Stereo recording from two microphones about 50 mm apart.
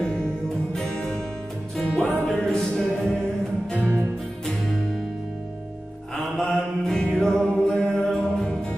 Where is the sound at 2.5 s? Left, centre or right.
Centre.